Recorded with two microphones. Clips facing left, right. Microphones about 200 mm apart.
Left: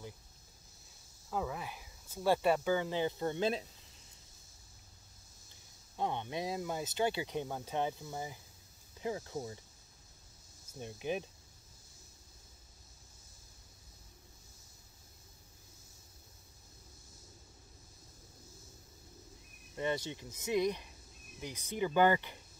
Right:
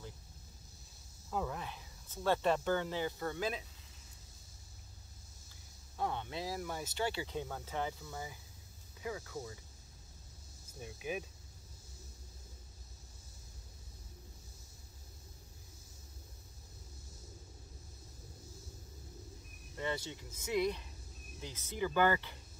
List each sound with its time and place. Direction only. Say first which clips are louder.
1.3 s speech: left 1 dB; 5° left (ahead or behind); by 3.6 s 30° left (ahead or behind)
5.9 s speech: left 2 dB; 20° left (ahead or behind)
10.8 s speech: left 3 dB; 30° left (ahead or behind)
19.7 s speech: left 3 dB; 20° left (ahead or behind)